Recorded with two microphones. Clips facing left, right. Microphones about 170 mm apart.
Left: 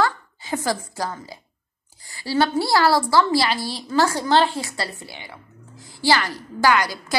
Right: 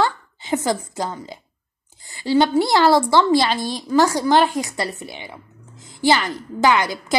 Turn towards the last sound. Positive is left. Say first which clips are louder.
# right 2 dB
turn(degrees=-20)  # may be behind; listen again after turning